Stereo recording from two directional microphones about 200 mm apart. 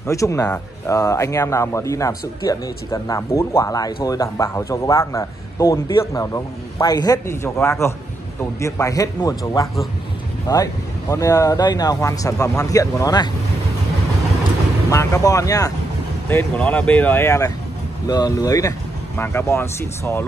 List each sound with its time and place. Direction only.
0.0 s speech: 15° left (ahead or behind)
14.9 s speech: 15° left (ahead or behind)